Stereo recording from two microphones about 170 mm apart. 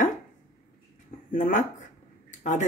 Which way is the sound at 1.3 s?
50° left (ahead or behind).